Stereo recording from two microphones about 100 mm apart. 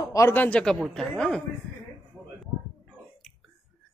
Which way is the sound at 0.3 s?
15° left (ahead or behind).